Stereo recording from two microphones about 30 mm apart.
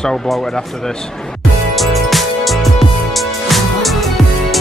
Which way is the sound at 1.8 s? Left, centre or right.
Centre.